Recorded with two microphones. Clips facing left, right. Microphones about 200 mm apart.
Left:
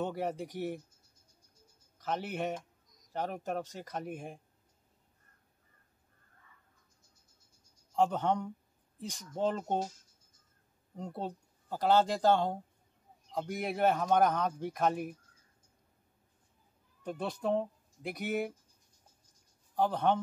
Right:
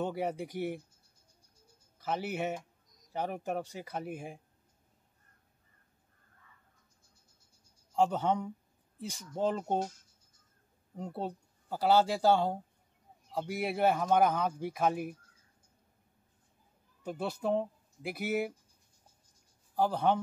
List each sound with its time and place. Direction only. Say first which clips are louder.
0.0 s speech: right 1 dB; 5° right (ahead or behind)
2.0 s speech: right 1 dB; 5° right (ahead or behind)
7.9 s speech: right 1 dB; 5° right (ahead or behind)
11.0 s speech: right 1 dB; 5° right (ahead or behind)
17.0 s speech: right 1 dB; 5° right (ahead or behind)
19.7 s speech: right 1 dB; 5° right (ahead or behind)